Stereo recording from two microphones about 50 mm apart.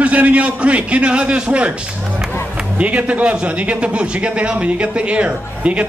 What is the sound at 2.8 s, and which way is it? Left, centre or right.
A man's voice, right.